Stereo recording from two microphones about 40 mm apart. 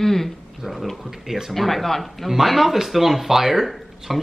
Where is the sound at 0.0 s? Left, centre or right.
Centre.